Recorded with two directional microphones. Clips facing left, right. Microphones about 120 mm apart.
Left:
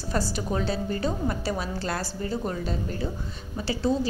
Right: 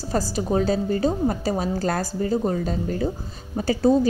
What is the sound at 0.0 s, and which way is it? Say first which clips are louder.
A woman's voice: right 4 dB; 35° right (ahead or behind).